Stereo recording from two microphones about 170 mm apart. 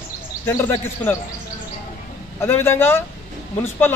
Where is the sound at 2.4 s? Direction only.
15° left (ahead or behind).